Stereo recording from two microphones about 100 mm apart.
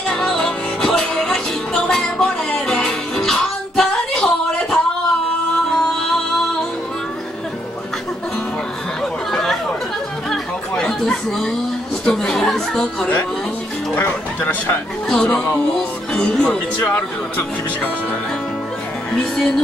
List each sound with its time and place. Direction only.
0.1 s music: 5° left (ahead or behind)
5.8 s music: 5° left (ahead or behind)
9.3 s chatter: 5° left (ahead or behind)
12.0 s a sound: 10° left (ahead or behind)
13.9 s speech: 20° left (ahead or behind)
15.0 s speech: 10° left (ahead or behind)